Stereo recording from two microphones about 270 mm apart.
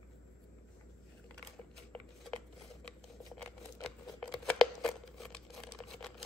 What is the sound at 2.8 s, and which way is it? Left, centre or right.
Scissors, centre.